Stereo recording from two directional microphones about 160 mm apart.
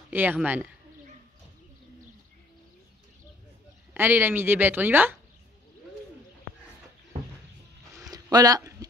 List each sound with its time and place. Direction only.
0.1 s speech: 10° right (ahead or behind)
3.9 s speech: 10° right (ahead or behind)
8.1 s a sound: 25° right (ahead or behind)